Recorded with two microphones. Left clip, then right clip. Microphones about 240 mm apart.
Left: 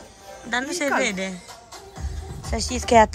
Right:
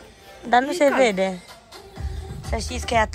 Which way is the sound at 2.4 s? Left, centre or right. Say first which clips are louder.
Left 3 dB; left.